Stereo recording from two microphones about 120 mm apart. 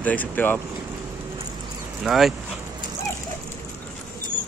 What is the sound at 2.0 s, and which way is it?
Speech, centre (ahead or behind).